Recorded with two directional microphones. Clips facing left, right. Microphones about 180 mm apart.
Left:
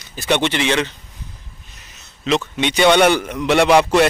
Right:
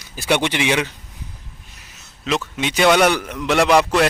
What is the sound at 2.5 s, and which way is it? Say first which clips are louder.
A man's voice: left 1 dB; 5° right (ahead or behind).